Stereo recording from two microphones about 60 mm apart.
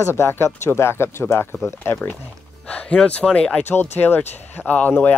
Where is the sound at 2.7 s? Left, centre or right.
Left.